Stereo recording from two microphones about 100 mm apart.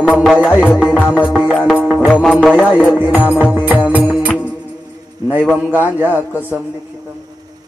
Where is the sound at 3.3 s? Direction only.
15° right (ahead or behind).